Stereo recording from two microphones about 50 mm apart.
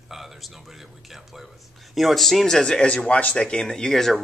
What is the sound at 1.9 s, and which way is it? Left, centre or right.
Speech, centre.